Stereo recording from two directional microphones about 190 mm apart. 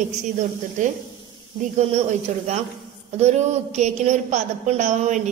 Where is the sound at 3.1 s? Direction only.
35° right (ahead or behind).